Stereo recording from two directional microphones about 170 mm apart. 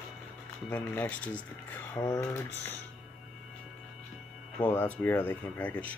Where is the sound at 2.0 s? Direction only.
25° left (ahead or behind).